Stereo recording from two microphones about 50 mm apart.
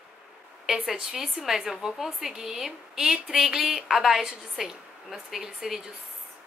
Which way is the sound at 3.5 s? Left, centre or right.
Centre.